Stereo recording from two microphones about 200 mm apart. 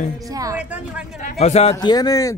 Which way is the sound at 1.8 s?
20° left (ahead or behind).